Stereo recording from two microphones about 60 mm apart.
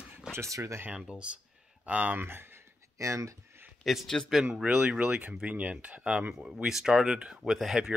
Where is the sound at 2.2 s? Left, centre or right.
Right.